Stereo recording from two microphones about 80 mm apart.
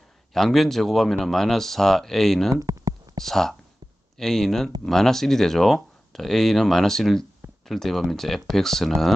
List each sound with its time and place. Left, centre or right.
0.3 s speech: centre
2.5 s a sound: right
3.3 s speech: centre